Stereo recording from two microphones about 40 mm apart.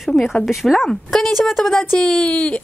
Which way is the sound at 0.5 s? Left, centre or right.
Centre.